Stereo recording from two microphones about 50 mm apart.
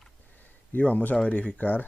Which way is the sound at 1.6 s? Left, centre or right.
Left.